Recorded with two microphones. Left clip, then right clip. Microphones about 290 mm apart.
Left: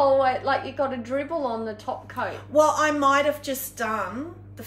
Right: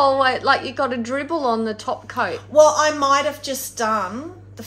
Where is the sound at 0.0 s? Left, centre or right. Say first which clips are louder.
Right 3 dB; right.